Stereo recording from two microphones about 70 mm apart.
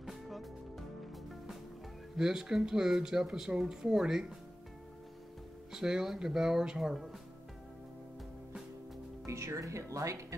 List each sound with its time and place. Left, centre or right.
0.0 s music: centre
2.1 s speech: centre
5.7 s speech: centre
9.2 s speech: right